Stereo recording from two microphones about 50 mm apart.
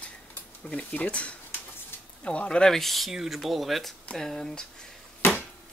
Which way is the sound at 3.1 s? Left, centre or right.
Centre.